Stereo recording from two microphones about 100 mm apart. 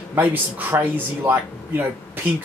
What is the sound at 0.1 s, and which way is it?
Speech, 20° right (ahead or behind).